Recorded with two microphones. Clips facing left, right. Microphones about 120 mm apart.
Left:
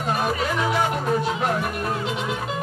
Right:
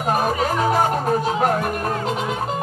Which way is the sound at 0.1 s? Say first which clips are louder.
Right 4 dB; 45° right (ahead or behind).